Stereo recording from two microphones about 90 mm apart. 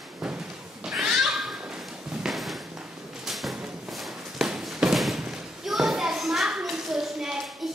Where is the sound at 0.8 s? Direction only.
5° right (ahead or behind).